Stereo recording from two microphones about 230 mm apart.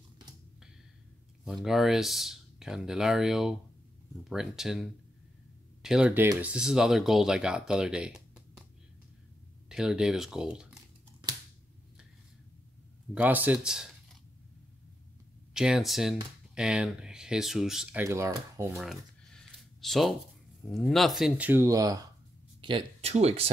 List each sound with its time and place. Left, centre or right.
1.4 s speech: centre
9.7 s speech: centre
13.1 s speech: centre
15.5 s speech: centre
18.8 s a sound: centre
20.6 s speech: centre; by 23.5 s right